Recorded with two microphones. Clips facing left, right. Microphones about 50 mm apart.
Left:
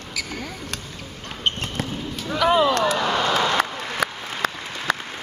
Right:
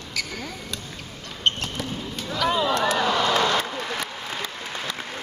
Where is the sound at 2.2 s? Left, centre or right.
Left.